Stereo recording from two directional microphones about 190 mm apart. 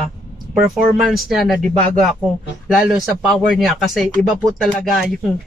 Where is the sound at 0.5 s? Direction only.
Centre (ahead or behind).